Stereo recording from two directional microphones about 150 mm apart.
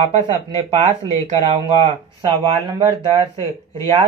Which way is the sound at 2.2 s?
35° right (ahead or behind).